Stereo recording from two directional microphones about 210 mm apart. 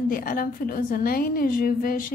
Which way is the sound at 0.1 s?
45° left (ahead or behind).